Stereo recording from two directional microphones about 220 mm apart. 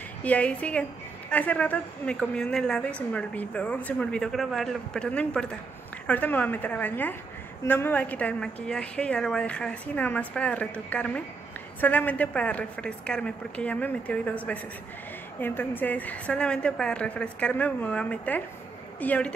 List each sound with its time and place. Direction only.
0.2 s a woman's voice: 5° left (ahead or behind)